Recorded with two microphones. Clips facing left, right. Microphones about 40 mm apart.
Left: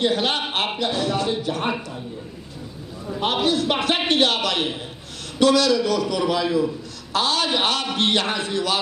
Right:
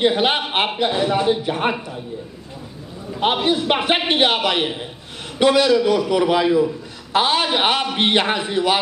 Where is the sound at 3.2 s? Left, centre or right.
Right.